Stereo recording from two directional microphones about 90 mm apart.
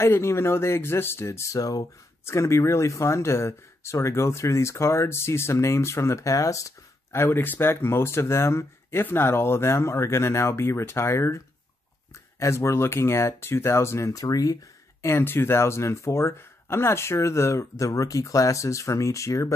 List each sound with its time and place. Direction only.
0.0 s speech: 30° left (ahead or behind)
2.2 s speech: 30° left (ahead or behind)